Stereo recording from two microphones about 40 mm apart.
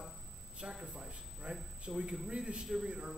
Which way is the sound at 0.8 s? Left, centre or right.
Right.